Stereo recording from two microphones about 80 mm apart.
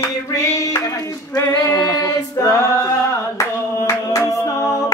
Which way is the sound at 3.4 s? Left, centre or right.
Left.